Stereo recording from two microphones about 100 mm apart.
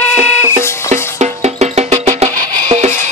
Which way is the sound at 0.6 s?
25° left (ahead or behind).